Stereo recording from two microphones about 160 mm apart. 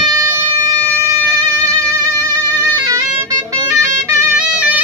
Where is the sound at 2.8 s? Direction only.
25° right (ahead or behind).